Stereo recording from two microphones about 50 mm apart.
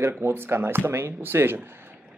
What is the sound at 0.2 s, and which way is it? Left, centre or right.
Speech, right.